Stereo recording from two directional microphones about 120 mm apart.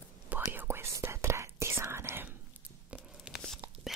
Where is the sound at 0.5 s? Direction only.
20° right (ahead or behind).